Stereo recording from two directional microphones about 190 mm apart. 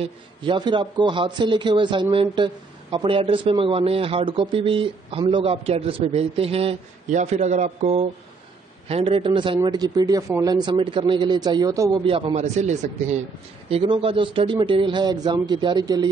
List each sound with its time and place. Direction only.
0.0 s a man's voice: 25° right (ahead or behind)